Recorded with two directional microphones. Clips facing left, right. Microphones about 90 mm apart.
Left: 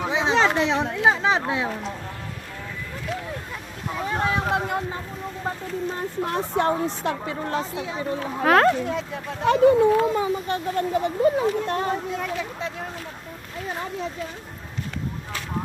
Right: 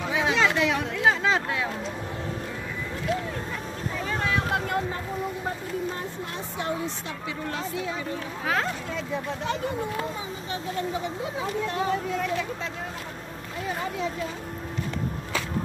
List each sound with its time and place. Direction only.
0.0 s chatter: 25° left (ahead or behind)
0.4 s speech: 35° left (ahead or behind)
1.0 s speech: 20° left (ahead or behind)
4.1 s speech: 30° left (ahead or behind)
6.2 s speech: 50° left (ahead or behind)
8.5 s speech: 65° left (ahead or behind)